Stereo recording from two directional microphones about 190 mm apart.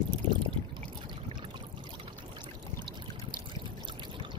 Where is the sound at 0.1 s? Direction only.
25° right (ahead or behind).